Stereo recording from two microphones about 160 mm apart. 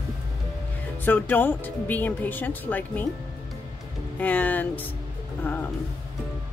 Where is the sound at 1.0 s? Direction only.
10° left (ahead or behind).